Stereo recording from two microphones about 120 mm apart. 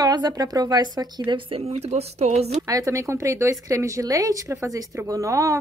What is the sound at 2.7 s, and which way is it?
A woman's voice, 25° right (ahead or behind).